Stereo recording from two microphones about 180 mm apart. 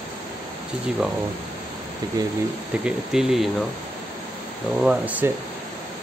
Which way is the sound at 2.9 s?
5° right (ahead or behind).